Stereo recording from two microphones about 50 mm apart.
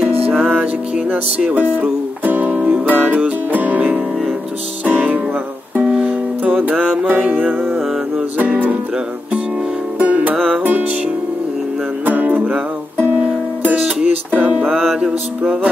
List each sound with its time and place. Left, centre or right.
0.0 s music: right
1.1 s speech: right
2.7 s music: right
5.8 s music: right
8.4 s speech: right
9.9 s music: right
10.3 s music: centre
12.1 s music: right
13.7 s music: centre
14.3 s music: right
14.7 s music: centre